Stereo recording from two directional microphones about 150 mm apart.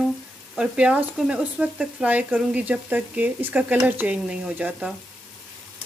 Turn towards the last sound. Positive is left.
turn(degrees=-5)  # may be behind; listen again after turning